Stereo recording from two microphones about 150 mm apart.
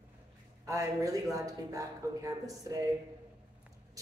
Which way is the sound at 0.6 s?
20° right (ahead or behind).